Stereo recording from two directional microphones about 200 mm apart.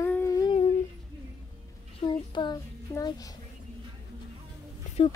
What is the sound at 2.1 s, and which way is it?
A child's voice, 20° left (ahead or behind).